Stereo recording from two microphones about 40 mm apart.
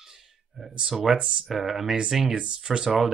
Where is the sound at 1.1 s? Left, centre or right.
Centre.